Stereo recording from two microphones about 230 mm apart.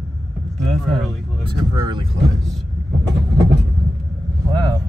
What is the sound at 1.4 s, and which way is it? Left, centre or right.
Speech, right.